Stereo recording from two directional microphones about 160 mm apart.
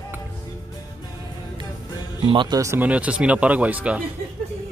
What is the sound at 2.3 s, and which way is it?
Speech, 30° right (ahead or behind).